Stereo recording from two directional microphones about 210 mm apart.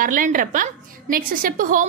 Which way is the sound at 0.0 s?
40° right (ahead or behind).